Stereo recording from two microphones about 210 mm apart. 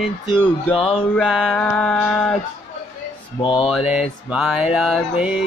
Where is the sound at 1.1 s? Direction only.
Centre (ahead or behind).